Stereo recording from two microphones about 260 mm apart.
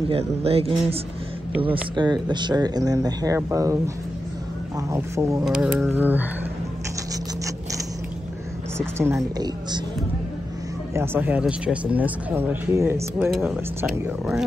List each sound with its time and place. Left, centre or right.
0.1 s speech: right; by 6.2 s centre
8.7 s speech: centre
11.0 s speech: centre